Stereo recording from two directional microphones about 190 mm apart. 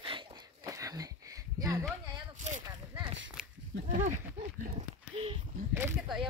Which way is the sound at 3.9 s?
40° right (ahead or behind).